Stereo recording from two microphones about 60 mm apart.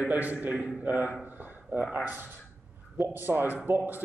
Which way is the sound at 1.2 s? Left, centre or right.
Right.